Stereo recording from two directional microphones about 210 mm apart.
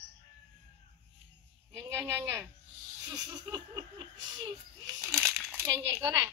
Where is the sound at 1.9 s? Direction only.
15° right (ahead or behind).